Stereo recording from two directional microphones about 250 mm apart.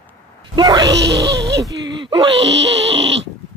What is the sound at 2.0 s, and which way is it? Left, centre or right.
Wail, centre.